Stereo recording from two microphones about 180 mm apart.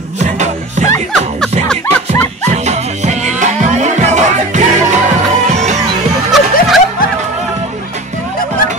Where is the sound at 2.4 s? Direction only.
40° right (ahead or behind).